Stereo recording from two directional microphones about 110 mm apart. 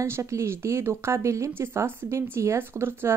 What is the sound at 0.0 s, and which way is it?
Speech, 25° right (ahead or behind).